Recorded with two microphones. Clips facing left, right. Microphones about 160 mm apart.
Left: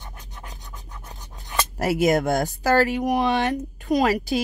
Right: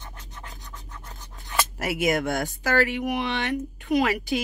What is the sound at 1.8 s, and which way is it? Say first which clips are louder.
Speech: left 6 dB; 40° left (ahead or behind).